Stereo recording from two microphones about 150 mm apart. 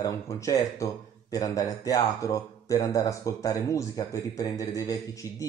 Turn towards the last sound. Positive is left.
turn(degrees=25)  # may be behind; listen again after turning